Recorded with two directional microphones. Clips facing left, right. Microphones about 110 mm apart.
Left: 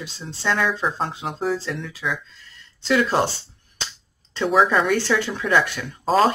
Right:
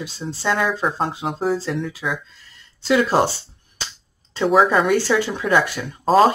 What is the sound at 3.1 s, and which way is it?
Speech, 10° right (ahead or behind).